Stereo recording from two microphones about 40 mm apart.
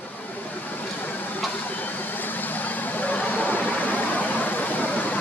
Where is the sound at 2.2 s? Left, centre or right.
Left.